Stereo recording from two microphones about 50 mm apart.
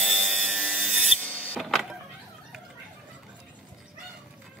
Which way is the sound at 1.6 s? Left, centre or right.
Centre.